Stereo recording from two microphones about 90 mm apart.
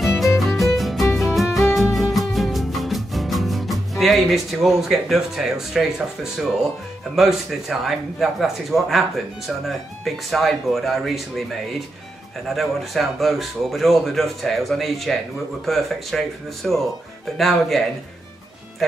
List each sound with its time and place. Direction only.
0.0 s music: 5° right (ahead or behind)
7.2 s speech: 5° right (ahead or behind)
12.5 s speech: centre (ahead or behind)